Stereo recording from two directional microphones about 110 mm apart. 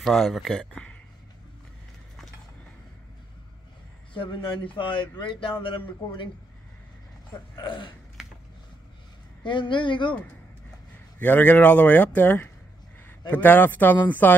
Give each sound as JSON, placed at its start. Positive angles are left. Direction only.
{"t": 0.0, "sound": "speech", "side_deg": 0}
{"t": 4.1, "sound": "a man's voice", "side_deg": 50}
{"t": 7.5, "sound": "a man's voice", "side_deg": 45}
{"t": 8.2, "sound": "a sound", "side_deg": -5}
{"t": 9.4, "sound": "a man's voice", "side_deg": 50}
{"t": 11.1, "sound": "speech", "side_deg": 15}